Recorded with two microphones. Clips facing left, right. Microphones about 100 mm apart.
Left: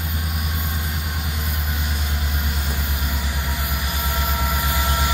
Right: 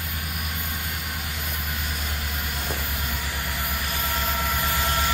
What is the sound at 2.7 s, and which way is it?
Vehicle, 15° left (ahead or behind).